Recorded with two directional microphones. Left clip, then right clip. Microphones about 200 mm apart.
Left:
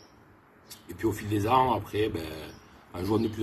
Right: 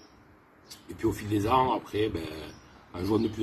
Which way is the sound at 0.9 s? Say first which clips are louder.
Even; 15° left (ahead or behind).